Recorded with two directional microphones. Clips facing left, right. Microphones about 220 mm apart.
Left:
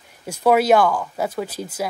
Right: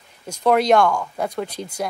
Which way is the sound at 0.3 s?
5° left (ahead or behind).